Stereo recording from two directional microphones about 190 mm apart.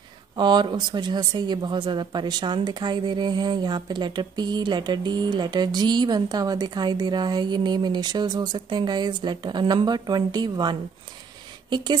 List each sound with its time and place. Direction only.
0.4 s speech: 25° right (ahead or behind)